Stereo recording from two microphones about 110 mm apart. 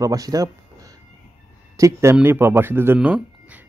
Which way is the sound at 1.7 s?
30° right (ahead or behind).